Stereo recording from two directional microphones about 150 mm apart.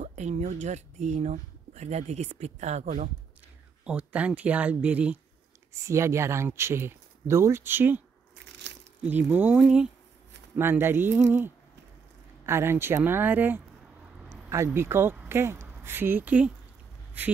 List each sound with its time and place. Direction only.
0.0 s speech: 50° right (ahead or behind)
3.8 s speech: 10° right (ahead or behind)
9.0 s a woman's voice: 10° right (ahead or behind)